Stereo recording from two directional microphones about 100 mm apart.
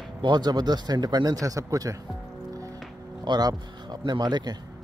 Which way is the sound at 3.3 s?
40° right (ahead or behind).